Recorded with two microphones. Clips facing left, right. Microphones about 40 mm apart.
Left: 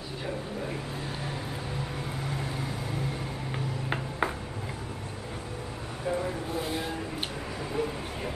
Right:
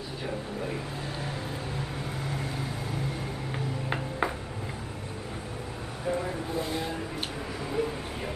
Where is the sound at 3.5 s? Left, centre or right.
Centre.